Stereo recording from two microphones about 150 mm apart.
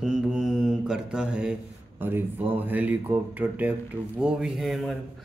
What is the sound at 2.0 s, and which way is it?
Speech, 15° right (ahead or behind).